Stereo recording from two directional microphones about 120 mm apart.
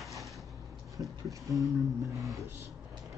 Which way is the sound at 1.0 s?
30° right (ahead or behind).